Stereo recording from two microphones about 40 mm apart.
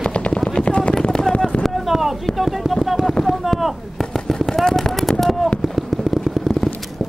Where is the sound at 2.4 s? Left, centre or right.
Centre.